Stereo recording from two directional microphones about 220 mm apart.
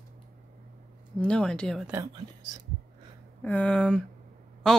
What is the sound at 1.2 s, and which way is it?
Speech, 5° left (ahead or behind).